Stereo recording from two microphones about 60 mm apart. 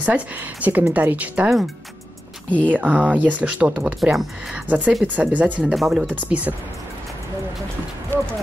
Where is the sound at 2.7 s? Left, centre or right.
Right.